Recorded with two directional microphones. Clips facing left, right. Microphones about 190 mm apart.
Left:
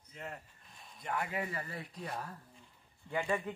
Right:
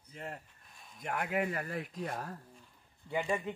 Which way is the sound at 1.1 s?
55° right (ahead or behind).